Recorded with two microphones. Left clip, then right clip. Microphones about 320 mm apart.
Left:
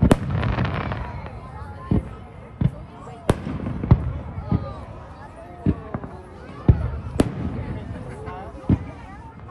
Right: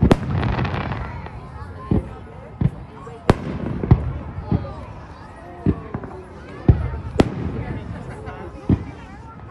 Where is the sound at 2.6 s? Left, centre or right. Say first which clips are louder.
Right 1 dB; centre.